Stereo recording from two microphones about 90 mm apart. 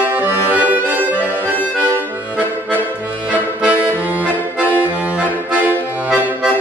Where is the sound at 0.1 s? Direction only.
20° right (ahead or behind).